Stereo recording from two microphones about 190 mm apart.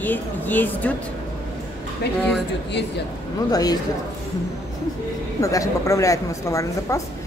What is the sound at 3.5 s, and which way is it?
Speech, 20° left (ahead or behind).